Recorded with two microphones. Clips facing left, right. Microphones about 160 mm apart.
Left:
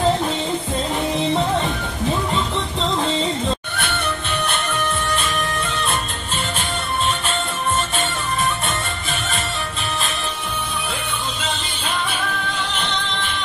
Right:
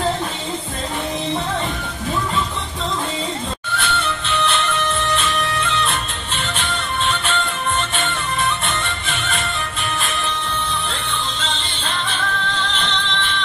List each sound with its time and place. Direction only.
3.7 s music: 55° left (ahead or behind)
12.1 s music: 10° left (ahead or behind)